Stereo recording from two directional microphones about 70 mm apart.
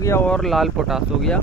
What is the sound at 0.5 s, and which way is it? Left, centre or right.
Speech, centre.